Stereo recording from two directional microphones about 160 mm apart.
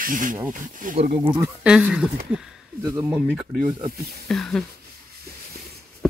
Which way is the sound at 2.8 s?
20° right (ahead or behind).